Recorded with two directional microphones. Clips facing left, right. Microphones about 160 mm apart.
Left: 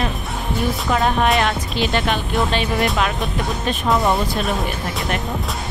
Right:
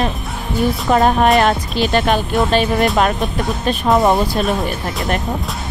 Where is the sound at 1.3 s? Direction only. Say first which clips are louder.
Right 5 dB; 45° right (ahead or behind).